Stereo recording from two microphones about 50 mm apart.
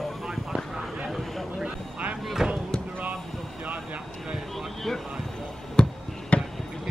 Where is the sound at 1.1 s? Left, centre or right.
Centre.